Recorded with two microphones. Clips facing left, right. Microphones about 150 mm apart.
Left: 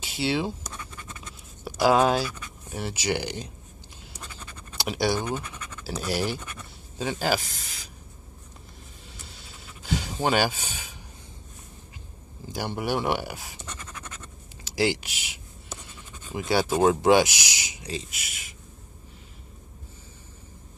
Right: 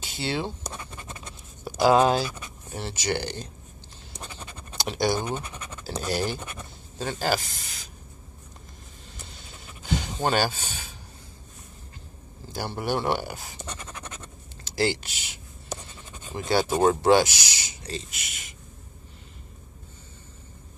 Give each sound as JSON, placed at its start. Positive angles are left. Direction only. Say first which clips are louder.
{"t": 0.0, "sound": "speech", "louder": "left 3 dB", "side_deg": 5}
{"t": 0.7, "sound": "scratch", "louder": "right 2 dB", "side_deg": -25}
{"t": 1.8, "sound": "speech", "louder": "right 1 dB", "side_deg": 0}
{"t": 4.5, "sound": "scratch", "louder": "right 2 dB", "side_deg": -25}
{"t": 4.7, "sound": "speech", "louder": "even", "side_deg": 5}
{"t": 5.2, "sound": "speech", "louder": "even", "side_deg": -10}
{"t": 6.0, "sound": "speech", "louder": "even", "side_deg": 5}
{"t": 9.8, "sound": "a sound", "louder": "even", "side_deg": 5}
{"t": 12.5, "sound": "speech", "louder": "even", "side_deg": 10}
{"t": 13.6, "sound": "scratch", "louder": "right 2 dB", "side_deg": -10}
{"t": 14.6, "sound": "speech", "louder": "left 1 dB", "side_deg": 10}